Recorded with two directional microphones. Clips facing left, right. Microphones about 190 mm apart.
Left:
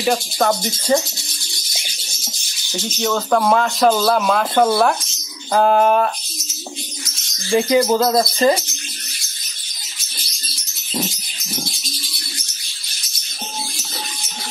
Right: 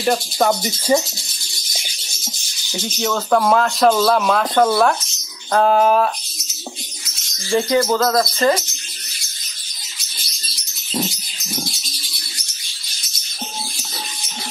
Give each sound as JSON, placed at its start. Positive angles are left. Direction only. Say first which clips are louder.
{"t": 0.0, "sound": "speech", "louder": "right 1 dB", "side_deg": 0}
{"t": 2.8, "sound": "speech", "louder": "left 1 dB", "side_deg": 0}
{"t": 7.5, "sound": "speech", "louder": "left 2 dB", "side_deg": 15}